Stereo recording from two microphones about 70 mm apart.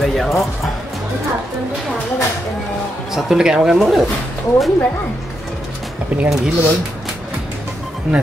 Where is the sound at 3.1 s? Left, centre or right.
Centre.